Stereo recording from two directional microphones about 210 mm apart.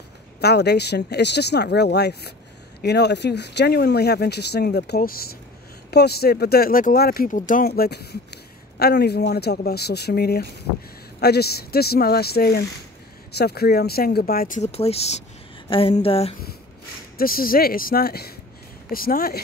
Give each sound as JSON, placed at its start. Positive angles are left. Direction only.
{"t": 0.4, "sound": "speech", "side_deg": 50}
{"t": 15.7, "sound": "a sound", "side_deg": 25}
{"t": 17.2, "sound": "speech", "side_deg": 45}